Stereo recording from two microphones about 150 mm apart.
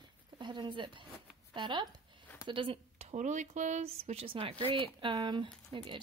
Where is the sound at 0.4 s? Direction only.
30° right (ahead or behind).